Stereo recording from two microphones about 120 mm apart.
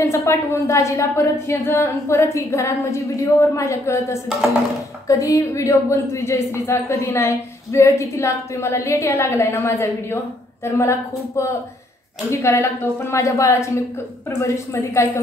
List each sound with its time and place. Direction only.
0.0 s speech: 25° left (ahead or behind)